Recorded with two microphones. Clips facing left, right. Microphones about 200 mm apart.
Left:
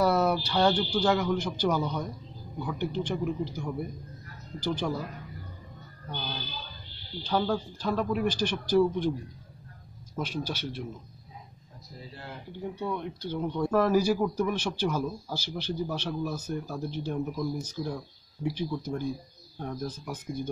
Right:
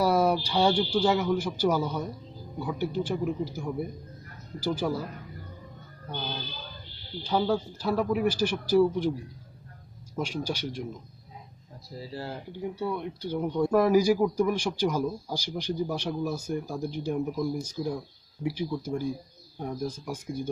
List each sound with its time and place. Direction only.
0.0 s speech: 10° right (ahead or behind)
7.2 s speech: 10° right (ahead or behind)
10.1 s speech: 10° right (ahead or behind)
12.1 s speech: 35° right (ahead or behind)
12.7 s speech: 10° right (ahead or behind)